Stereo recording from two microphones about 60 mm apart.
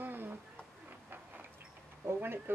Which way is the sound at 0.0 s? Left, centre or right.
Right.